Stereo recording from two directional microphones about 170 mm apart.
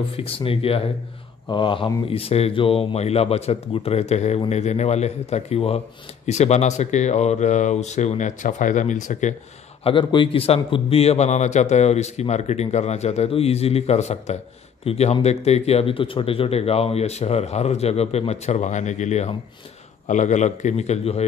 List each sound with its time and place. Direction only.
0.1 s a man's voice: 35° left (ahead or behind)
9.8 s a man's voice: 30° left (ahead or behind)